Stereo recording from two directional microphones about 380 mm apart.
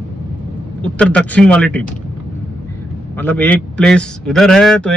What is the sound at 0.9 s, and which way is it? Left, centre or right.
Speech, centre.